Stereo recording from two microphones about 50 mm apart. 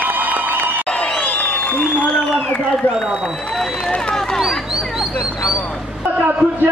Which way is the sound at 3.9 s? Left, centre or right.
Centre.